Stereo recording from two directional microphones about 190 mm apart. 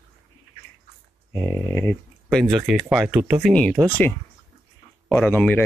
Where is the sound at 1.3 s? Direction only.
15° left (ahead or behind).